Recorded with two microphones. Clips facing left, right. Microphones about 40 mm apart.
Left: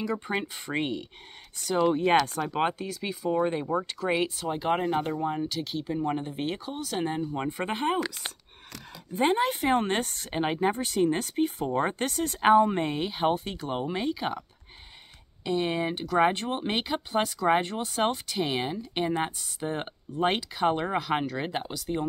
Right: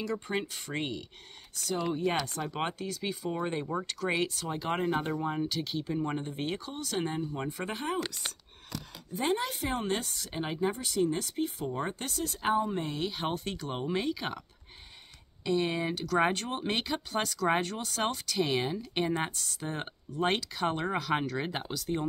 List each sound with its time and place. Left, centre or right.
0.1 s speech: left
2.2 s speech: centre
7.2 s speech: left
9.1 s speech: left
12.9 s speech: left
15.4 s speech: left; by 22.0 s centre